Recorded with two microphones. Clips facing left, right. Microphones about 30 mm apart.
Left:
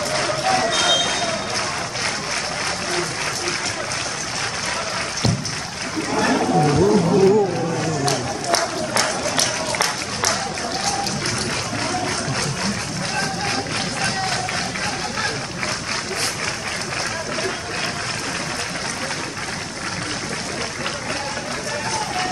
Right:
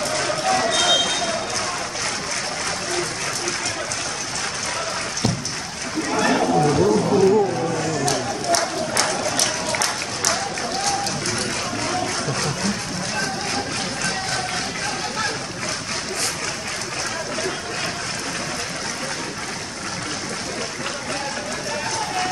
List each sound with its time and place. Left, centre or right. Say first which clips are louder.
0.6 s vehicle: right 1 dB; centre
6.2 s a sound: even; centre
6.7 s vehicle: left 1 dB; centre
8.5 s applause: left 3 dB; centre
9.8 s music: left 1 dB; centre